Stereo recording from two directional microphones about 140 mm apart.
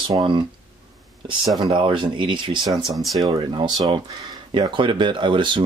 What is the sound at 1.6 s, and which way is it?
Speech, 35° right (ahead or behind).